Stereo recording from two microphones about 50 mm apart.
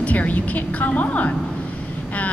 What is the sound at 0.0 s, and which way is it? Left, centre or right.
A woman's voice, left.